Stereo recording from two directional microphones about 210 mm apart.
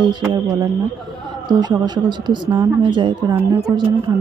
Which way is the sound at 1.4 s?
20° right (ahead or behind).